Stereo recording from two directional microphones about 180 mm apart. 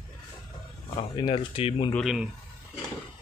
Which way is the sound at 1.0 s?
30° left (ahead or behind).